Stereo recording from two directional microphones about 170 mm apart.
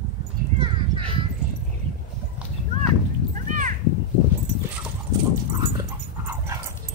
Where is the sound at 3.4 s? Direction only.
50° right (ahead or behind).